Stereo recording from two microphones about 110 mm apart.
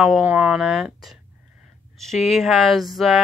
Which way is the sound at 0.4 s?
Centre (ahead or behind).